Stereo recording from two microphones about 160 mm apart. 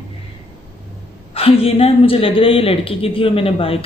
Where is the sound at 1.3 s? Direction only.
35° left (ahead or behind).